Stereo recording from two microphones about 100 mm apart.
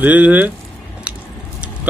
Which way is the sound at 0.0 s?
15° right (ahead or behind).